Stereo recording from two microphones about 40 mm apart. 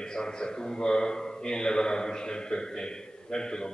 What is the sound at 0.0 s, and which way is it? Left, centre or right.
A man's voice, centre.